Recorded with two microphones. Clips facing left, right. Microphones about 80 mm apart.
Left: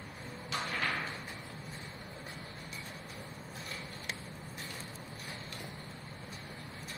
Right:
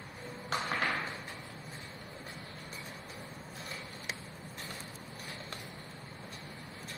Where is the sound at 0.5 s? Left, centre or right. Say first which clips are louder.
Right 3 dB; right.